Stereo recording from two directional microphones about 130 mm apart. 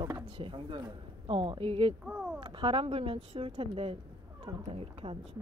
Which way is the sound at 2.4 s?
40° right (ahead or behind).